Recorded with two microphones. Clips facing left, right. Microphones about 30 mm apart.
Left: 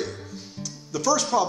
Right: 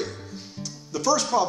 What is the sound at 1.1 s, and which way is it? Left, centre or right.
Speech, centre.